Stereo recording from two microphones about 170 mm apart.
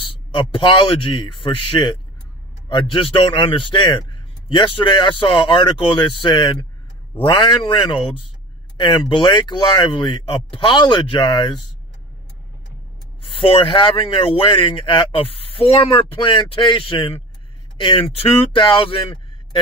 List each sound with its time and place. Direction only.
0.0 s a man's voice: 30° left (ahead or behind)
13.2 s speech: 30° left (ahead or behind)